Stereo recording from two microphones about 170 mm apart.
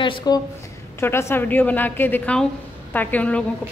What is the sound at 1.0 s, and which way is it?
A woman's voice, 15° left (ahead or behind).